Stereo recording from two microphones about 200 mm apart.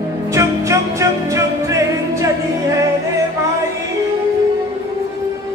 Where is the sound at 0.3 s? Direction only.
15° right (ahead or behind).